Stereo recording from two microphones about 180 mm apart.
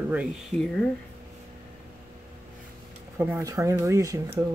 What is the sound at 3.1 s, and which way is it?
Speech, 15° right (ahead or behind).